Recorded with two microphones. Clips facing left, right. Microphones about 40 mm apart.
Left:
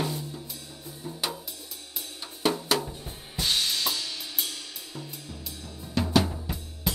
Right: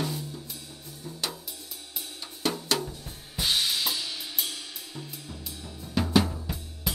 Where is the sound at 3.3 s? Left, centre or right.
Centre.